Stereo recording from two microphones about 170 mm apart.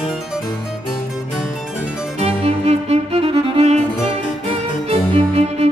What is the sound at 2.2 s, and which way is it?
Music, 40° right (ahead or behind).